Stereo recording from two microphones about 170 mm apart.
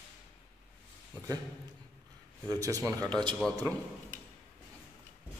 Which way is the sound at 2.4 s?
20° right (ahead or behind).